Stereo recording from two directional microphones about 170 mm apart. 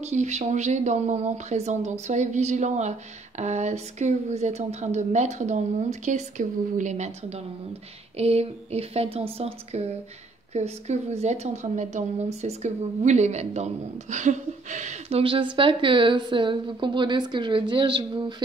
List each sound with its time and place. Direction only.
0.0 s a woman's voice: 45° right (ahead or behind); by 18.3 s 25° right (ahead or behind)